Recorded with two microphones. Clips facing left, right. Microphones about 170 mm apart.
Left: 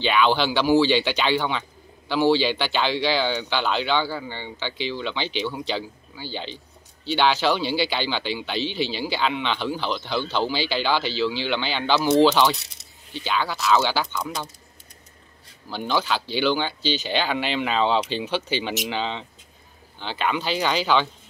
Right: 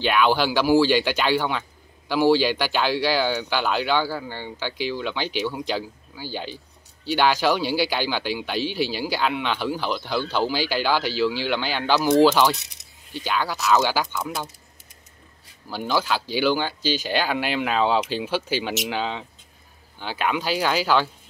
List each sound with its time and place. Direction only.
0.0 s speech: 5° right (ahead or behind)
15.7 s speech: 10° right (ahead or behind)